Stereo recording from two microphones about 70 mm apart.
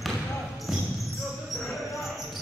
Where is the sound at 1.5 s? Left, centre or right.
Centre.